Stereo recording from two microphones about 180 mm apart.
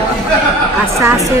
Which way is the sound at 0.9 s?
15° right (ahead or behind).